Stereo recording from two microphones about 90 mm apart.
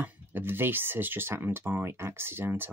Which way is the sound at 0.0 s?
20° right (ahead or behind).